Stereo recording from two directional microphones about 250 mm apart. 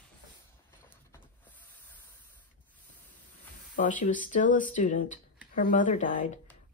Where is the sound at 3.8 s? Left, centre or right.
Left.